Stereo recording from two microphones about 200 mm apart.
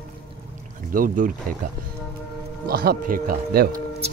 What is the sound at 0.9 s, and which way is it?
Speech, 45° right (ahead or behind).